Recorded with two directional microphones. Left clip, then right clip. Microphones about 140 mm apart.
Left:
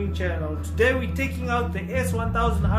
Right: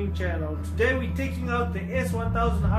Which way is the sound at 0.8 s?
35° left (ahead or behind).